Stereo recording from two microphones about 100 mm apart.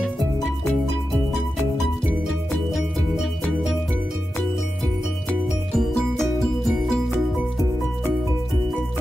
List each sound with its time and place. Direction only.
0.0 s music: centre (ahead or behind)
2.7 s music: centre (ahead or behind)
5.8 s music: 5° left (ahead or behind)